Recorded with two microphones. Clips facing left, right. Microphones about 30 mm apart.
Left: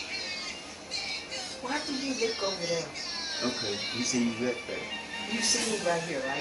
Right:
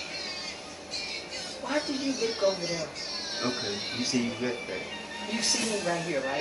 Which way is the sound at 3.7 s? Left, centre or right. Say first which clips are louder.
Even; centre.